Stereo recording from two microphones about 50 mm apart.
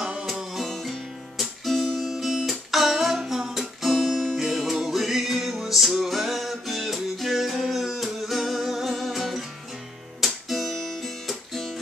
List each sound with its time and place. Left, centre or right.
0.0 s music: centre
0.3 s music: centre
0.7 s music: centre